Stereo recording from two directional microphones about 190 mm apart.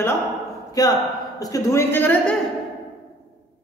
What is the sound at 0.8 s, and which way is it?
A woman's voice, 20° left (ahead or behind).